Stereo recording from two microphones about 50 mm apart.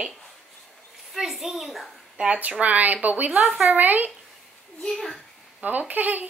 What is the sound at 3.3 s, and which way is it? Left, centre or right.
Speech, centre.